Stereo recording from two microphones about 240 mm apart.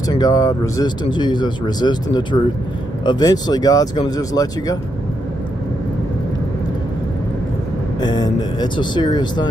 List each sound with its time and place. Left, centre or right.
0.1 s speech: centre
8.0 s speech: centre